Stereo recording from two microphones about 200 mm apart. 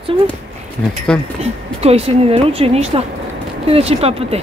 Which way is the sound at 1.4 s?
30° right (ahead or behind).